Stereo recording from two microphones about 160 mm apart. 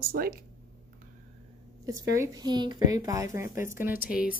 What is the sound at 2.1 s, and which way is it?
A child's voice, 20° right (ahead or behind).